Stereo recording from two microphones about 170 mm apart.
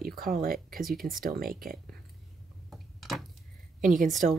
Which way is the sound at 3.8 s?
50° right (ahead or behind).